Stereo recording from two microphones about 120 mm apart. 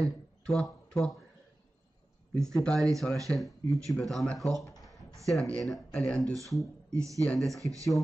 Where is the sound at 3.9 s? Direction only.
Centre (ahead or behind).